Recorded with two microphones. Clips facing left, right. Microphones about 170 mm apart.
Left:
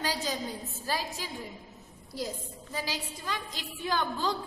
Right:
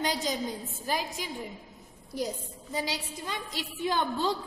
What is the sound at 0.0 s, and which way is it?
A woman's voice, 20° right (ahead or behind).